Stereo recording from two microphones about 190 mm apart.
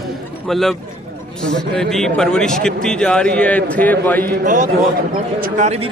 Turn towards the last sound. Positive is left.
turn(degrees=-35)  # may be behind; listen again after turning